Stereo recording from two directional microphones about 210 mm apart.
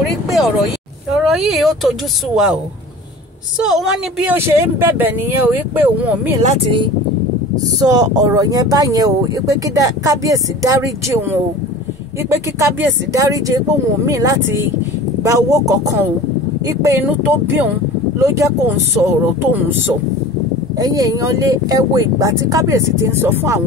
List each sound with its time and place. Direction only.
0.1 s speech: centre (ahead or behind)
3.6 s speech: centre (ahead or behind)
6.4 s speech: 30° right (ahead or behind); by 23.6 s 10° right (ahead or behind)